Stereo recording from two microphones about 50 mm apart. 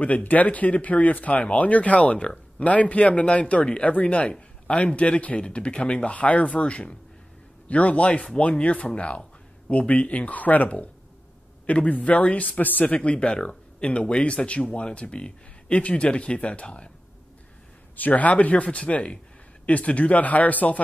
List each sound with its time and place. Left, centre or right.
0.0 s speech: left
17.9 s speech: left